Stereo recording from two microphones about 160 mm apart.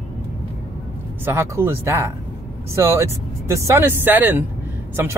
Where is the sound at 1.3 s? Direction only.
15° right (ahead or behind).